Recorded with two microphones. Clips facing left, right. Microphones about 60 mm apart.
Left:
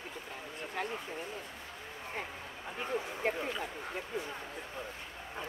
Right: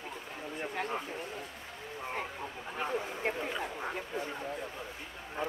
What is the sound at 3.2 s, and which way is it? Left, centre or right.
Speech, centre.